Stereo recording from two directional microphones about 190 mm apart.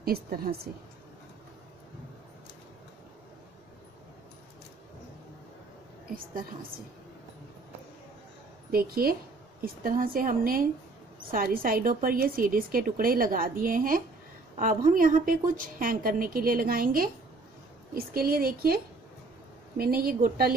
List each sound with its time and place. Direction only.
0.0 s a woman's voice: 50° right (ahead or behind)
8.7 s a woman's voice: 50° right (ahead or behind)
19.8 s a woman's voice: 50° right (ahead or behind)